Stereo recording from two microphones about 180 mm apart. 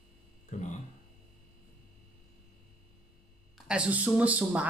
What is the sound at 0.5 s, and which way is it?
Speech, 40° left (ahead or behind).